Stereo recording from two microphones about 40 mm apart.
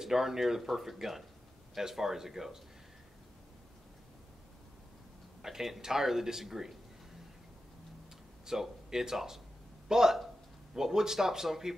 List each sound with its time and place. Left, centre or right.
0.0 s speech: centre
5.4 s speech: centre
8.5 s speech: centre